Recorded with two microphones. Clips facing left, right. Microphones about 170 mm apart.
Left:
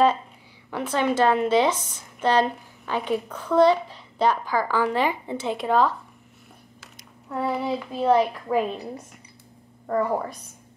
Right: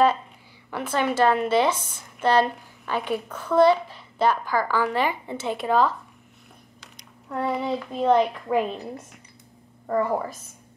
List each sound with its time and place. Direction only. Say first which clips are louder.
0.7 s a woman's voice: left 1 dB; 5° right (ahead or behind)